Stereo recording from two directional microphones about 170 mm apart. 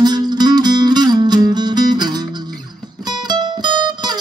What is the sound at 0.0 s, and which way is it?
Music, 25° right (ahead or behind).